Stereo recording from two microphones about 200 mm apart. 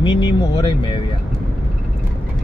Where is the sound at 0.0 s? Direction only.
25° left (ahead or behind).